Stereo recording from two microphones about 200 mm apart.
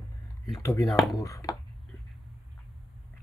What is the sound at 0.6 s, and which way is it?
Speech, 15° left (ahead or behind).